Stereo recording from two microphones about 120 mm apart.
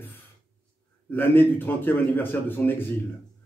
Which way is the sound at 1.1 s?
15° left (ahead or behind).